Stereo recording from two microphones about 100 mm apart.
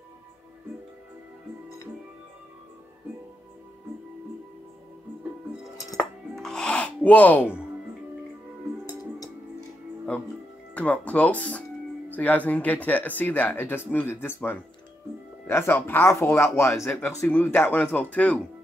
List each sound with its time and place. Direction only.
5.9 s music: 5° left (ahead or behind)
8.8 s music: 40° left (ahead or behind)
10.7 s speech: 15° left (ahead or behind)
17.3 s speech: 15° left (ahead or behind)